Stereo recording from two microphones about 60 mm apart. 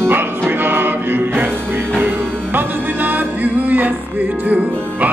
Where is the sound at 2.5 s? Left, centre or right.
Right.